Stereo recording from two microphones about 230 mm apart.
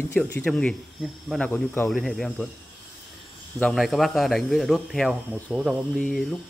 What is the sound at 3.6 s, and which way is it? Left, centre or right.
Speech, centre.